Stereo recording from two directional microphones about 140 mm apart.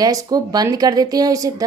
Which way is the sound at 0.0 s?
25° right (ahead or behind).